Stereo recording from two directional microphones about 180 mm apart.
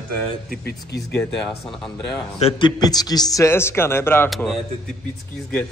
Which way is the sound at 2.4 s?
25° left (ahead or behind).